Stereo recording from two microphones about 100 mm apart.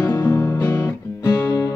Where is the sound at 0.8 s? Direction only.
40° left (ahead or behind).